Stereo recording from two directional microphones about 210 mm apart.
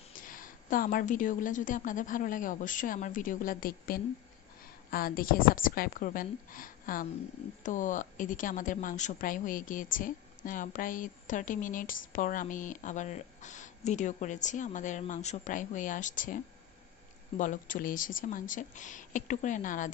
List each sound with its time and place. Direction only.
0.2 s a woman's voice: 40° left (ahead or behind)
17.4 s a woman's voice: 40° left (ahead or behind)